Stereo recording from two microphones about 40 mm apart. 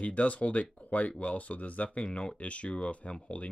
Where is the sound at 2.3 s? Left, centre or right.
Left.